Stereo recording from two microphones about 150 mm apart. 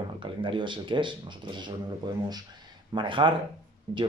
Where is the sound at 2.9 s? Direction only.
30° right (ahead or behind).